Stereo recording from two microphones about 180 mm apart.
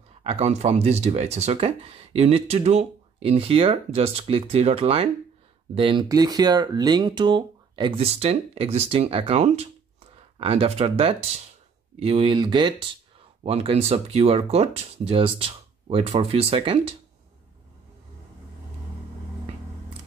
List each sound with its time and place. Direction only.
0.2 s speech: 35° right (ahead or behind)